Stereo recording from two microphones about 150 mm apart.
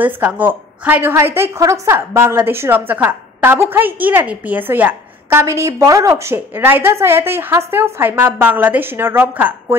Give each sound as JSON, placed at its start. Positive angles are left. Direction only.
{"t": 0.0, "sound": "a woman's voice", "side_deg": -10}